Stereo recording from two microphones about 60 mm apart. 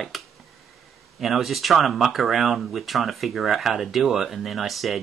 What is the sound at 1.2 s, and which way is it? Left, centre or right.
Speech, centre.